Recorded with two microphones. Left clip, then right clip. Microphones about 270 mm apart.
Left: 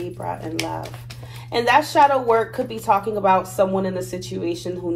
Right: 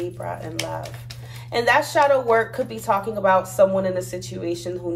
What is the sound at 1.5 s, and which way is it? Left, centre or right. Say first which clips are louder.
A woman's voice: left 1 dB; centre.